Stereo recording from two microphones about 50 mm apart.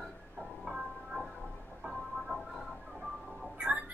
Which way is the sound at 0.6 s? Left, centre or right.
Centre.